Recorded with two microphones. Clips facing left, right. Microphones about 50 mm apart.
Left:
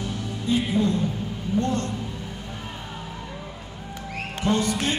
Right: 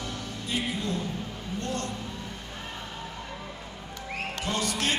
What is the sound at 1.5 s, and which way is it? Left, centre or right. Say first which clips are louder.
Speech: left 8 dB; left.